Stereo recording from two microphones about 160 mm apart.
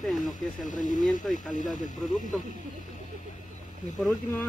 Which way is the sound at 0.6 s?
55° left (ahead or behind).